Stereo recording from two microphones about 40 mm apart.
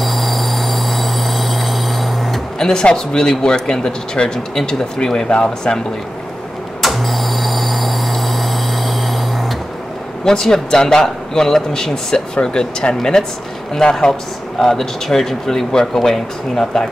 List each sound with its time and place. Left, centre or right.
0.0 s train: centre
2.6 s speech: left
6.8 s a sound: centre
10.2 s speech: centre